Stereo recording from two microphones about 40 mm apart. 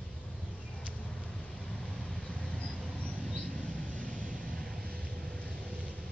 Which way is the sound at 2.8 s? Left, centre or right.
Left.